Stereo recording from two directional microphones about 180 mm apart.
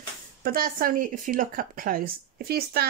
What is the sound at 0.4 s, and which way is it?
Speech, 55° right (ahead or behind).